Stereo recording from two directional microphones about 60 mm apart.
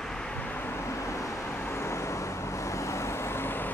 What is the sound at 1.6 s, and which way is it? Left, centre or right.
Vehicle, left.